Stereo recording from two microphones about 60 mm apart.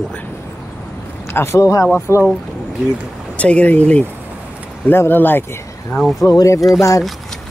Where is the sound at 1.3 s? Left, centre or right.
Left.